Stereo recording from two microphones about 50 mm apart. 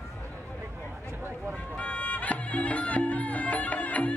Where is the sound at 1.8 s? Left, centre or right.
Left.